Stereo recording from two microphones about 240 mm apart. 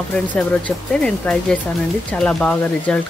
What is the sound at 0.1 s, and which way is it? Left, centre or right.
Speech, centre.